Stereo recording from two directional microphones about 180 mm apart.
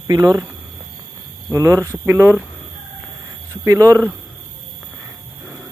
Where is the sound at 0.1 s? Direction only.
20° right (ahead or behind).